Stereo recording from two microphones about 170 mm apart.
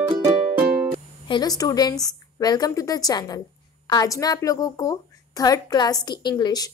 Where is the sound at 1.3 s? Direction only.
25° left (ahead or behind).